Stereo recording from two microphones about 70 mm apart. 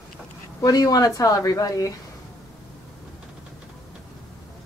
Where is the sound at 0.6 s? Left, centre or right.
Left.